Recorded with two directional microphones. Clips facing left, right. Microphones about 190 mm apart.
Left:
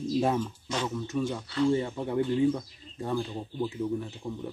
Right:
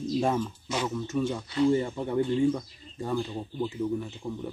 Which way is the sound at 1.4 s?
15° right (ahead or behind).